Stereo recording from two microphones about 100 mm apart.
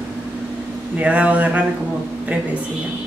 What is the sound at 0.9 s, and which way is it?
Speech, 15° right (ahead or behind).